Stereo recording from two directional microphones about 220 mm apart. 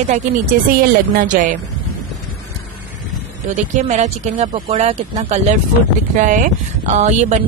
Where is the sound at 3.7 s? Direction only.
30° right (ahead or behind).